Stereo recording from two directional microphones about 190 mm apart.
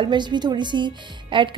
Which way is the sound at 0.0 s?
25° right (ahead or behind).